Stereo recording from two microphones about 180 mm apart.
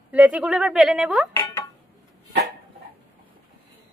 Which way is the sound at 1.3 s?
15° left (ahead or behind).